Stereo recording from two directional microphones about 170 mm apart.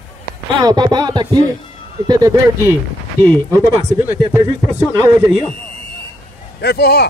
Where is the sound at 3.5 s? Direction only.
15° right (ahead or behind).